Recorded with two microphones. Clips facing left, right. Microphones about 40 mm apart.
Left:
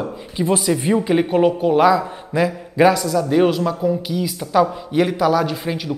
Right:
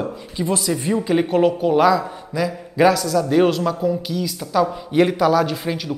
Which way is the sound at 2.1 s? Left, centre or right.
Left.